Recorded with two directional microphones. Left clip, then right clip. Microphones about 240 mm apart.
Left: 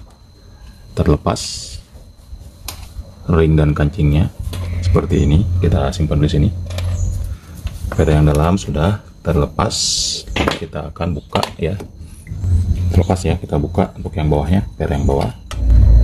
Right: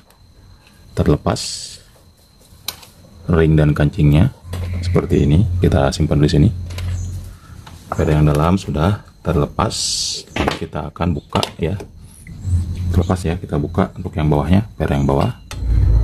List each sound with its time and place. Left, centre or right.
0.9 s speech: centre
3.3 s speech: centre
5.6 s speech: right
8.0 s speech: centre
12.9 s speech: centre; by 15.3 s right